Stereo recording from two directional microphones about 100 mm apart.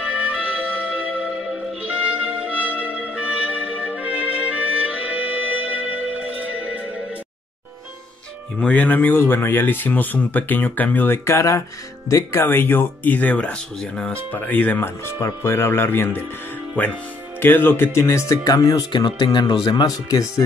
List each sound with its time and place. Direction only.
0.3 s music: 15° right (ahead or behind)
8.5 s speech: 15° left (ahead or behind); by 18.9 s 35° left (ahead or behind)
18.9 s speech: 50° left (ahead or behind)